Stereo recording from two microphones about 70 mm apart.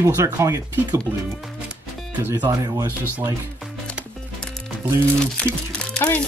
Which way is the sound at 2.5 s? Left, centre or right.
Right.